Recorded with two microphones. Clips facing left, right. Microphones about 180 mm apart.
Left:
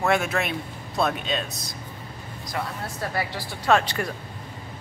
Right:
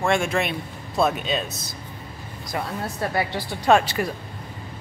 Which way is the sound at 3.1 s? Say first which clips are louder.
Right 4 dB; 20° right (ahead or behind).